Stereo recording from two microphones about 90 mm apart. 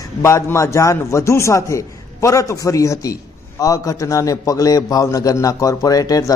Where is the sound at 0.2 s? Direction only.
30° left (ahead or behind).